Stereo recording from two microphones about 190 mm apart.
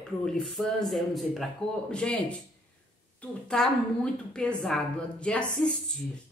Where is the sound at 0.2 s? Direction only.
5° left (ahead or behind).